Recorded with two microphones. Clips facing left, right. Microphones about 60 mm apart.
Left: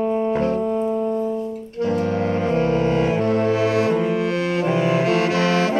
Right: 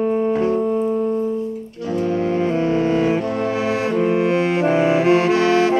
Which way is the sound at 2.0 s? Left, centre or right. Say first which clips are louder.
Right 2 dB; left.